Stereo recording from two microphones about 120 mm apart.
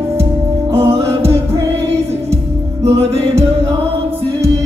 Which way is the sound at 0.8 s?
20° right (ahead or behind).